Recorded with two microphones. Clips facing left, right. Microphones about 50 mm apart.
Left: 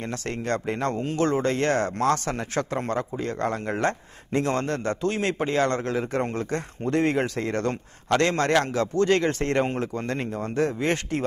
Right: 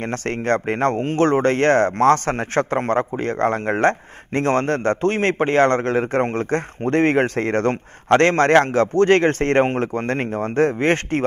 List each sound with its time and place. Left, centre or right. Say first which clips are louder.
0.0 s speech: right 6 dB; right